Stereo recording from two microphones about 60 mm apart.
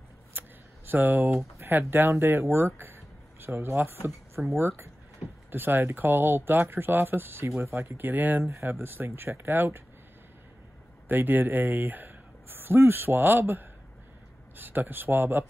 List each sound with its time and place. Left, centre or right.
0.3 s a sound: right
1.6 s speech: right
2.8 s a sound: right
4.6 s speech: right
8.5 s speech: right
11.1 s speech: right